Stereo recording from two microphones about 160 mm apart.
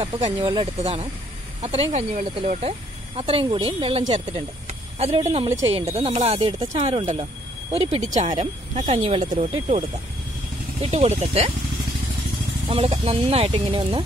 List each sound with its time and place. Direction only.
0.0 s speech: 40° right (ahead or behind)
12.6 s speech: 35° right (ahead or behind)